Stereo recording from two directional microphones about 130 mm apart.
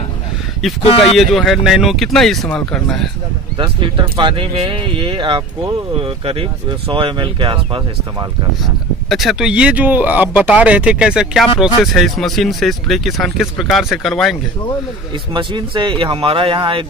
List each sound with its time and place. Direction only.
0.8 s speech: 45° left (ahead or behind)
1.1 s speech: centre (ahead or behind)
3.5 s speech: 40° right (ahead or behind)
8.6 s speech: centre (ahead or behind)
15.3 s speech: 35° right (ahead or behind)